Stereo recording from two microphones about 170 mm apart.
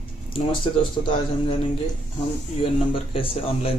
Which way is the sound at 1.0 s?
30° left (ahead or behind).